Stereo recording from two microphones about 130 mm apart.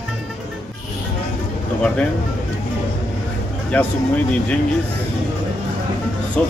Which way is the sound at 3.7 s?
10° left (ahead or behind).